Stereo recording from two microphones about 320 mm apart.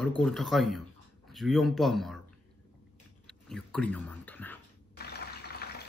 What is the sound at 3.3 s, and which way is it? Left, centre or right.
Speech, centre.